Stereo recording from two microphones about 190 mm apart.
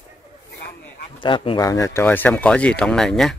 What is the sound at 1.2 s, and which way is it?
Speech, 25° left (ahead or behind).